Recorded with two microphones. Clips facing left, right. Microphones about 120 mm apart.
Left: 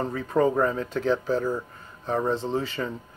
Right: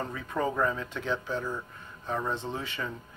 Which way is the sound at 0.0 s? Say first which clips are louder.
Left 8 dB; 35° left (ahead or behind).